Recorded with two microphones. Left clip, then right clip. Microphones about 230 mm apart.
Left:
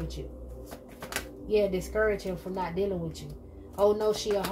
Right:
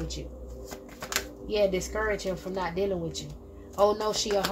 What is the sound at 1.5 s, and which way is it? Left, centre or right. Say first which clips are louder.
Speech: even; right.